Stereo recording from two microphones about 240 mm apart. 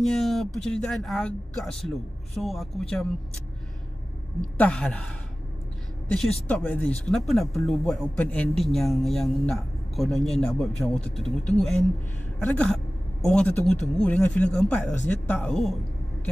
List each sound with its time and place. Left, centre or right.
0.1 s a man's voice: centre
4.4 s a man's voice: centre
6.1 s a man's voice: centre
12.4 s a woman's voice: centre